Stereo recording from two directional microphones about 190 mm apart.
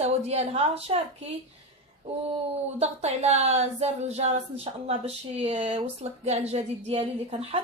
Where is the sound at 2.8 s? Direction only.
35° right (ahead or behind).